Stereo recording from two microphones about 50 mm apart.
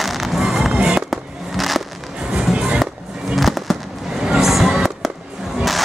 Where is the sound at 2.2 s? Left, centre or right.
Centre.